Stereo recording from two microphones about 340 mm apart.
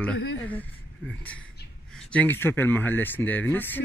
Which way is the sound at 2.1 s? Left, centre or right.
Centre.